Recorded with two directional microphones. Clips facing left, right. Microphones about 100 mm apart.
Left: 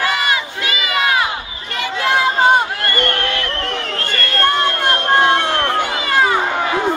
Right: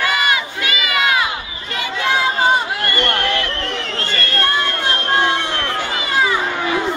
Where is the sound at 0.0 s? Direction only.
35° left (ahead or behind).